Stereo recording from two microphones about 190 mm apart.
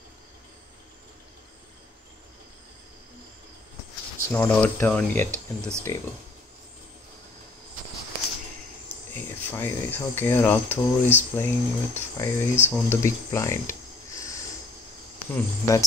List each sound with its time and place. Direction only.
4.3 s speech: 10° left (ahead or behind)
9.1 s speech: 10° left (ahead or behind)